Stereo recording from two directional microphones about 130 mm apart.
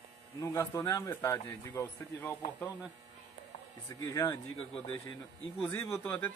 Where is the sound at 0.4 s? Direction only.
25° left (ahead or behind).